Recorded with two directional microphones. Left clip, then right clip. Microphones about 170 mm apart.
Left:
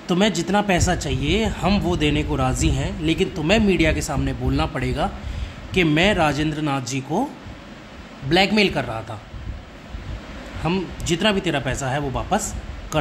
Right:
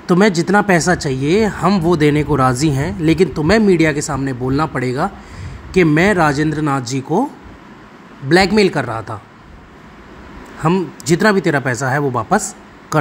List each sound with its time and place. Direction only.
0.0 s speech: 25° right (ahead or behind)
8.3 s speech: 20° right (ahead or behind)
10.6 s speech: 25° right (ahead or behind)